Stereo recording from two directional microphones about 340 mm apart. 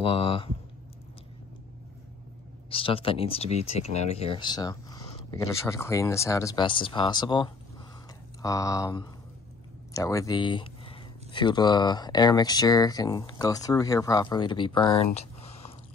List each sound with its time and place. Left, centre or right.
0.0 s speech: centre
2.7 s speech: centre